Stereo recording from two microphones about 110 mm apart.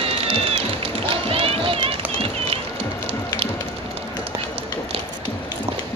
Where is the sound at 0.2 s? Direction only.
60° right (ahead or behind).